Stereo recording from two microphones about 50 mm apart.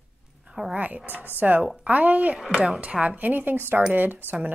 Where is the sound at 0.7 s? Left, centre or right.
Right.